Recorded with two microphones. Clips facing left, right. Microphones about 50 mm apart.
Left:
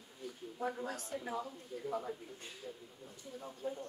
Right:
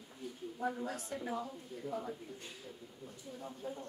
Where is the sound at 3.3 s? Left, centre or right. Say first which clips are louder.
Left 2 dB; centre.